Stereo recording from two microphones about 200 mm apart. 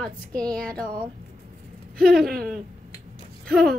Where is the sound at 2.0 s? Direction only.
Centre (ahead or behind).